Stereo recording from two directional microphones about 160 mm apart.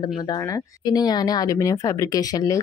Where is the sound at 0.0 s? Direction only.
25° left (ahead or behind).